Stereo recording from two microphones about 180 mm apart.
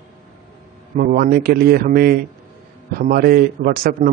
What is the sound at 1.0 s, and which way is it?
Speech, 55° right (ahead or behind).